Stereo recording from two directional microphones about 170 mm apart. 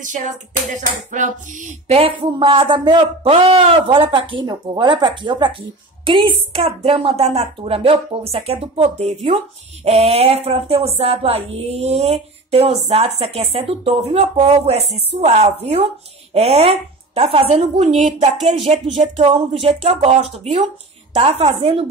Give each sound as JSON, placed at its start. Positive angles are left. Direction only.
{"t": 0.0, "sound": "clapping", "side_deg": -50}
{"t": 1.9, "sound": "a man's voice", "side_deg": -35}